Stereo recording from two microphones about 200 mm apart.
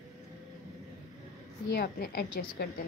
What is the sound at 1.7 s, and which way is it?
A woman's voice, 50° left (ahead or behind).